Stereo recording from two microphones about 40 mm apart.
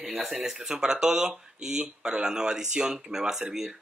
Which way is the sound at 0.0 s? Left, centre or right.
Right.